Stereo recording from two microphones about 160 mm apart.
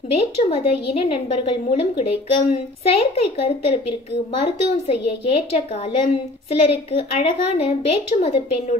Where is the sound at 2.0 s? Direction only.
40° left (ahead or behind).